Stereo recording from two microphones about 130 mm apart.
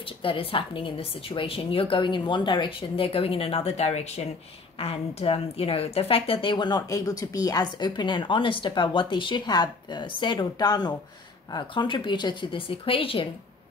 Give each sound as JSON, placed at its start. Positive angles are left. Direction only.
{"t": 0.0, "sound": "a woman's voice", "side_deg": 45}